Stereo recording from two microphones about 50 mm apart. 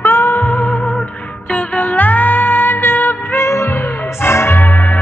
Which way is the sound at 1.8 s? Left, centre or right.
Left.